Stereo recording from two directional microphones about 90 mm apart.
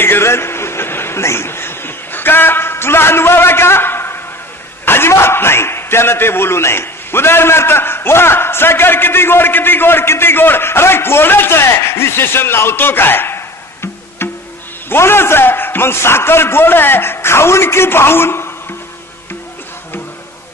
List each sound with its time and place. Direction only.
0.0 s a sound: 25° left (ahead or behind)
4.8 s a man's voice: 25° left (ahead or behind)
14.2 s music: 25° left (ahead or behind)
14.9 s a man's voice: 25° left (ahead or behind)